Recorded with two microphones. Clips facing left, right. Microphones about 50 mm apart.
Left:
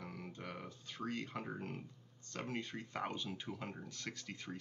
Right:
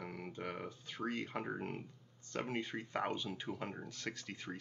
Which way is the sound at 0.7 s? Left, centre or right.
Centre.